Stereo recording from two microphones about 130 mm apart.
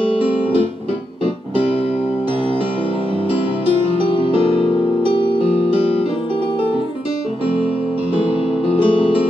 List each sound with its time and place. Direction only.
4.0 s music: 40° left (ahead or behind)
4.3 s music: 50° right (ahead or behind)
4.6 s music: 40° left (ahead or behind)
8.7 s music: 40° left (ahead or behind)